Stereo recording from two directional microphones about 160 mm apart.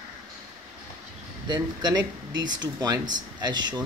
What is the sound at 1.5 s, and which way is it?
Speech, 25° right (ahead or behind).